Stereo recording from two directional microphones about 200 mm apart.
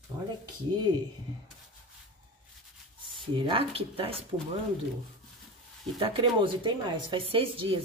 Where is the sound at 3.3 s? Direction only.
25° right (ahead or behind).